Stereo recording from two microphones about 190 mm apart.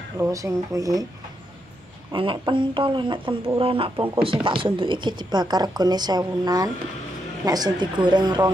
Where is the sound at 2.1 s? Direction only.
25° right (ahead or behind).